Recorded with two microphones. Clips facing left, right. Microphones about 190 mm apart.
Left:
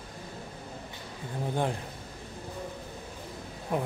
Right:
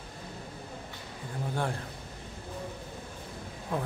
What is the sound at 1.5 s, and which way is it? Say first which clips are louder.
Speech: left 3 dB; 20° left (ahead or behind).